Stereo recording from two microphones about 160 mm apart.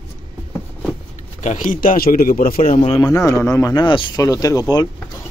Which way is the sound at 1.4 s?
50° left (ahead or behind).